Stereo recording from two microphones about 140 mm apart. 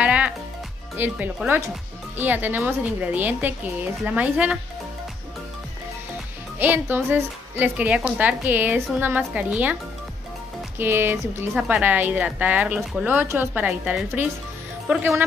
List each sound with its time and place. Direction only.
0.0 s music: 10° right (ahead or behind)
0.9 s a woman's voice: 15° right (ahead or behind)
6.6 s a woman's voice: 15° right (ahead or behind)
10.8 s a woman's voice: 15° right (ahead or behind)